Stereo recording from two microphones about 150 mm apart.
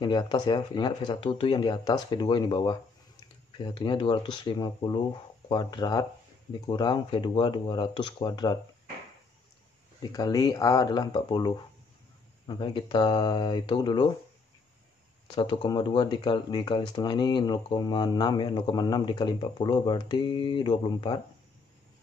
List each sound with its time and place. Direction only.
0.0 s speech: 30° left (ahead or behind)
10.1 s speech: 25° left (ahead or behind)
15.2 s speech: 35° left (ahead or behind)